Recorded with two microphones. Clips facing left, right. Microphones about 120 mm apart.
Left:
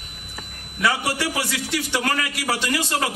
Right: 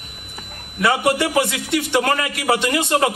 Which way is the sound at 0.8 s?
20° right (ahead or behind).